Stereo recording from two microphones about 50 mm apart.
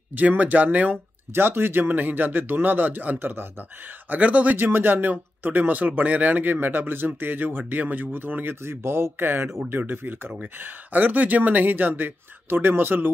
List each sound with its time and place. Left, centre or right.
0.4 s speech: right
4.1 s speech: right
4.6 s speech: right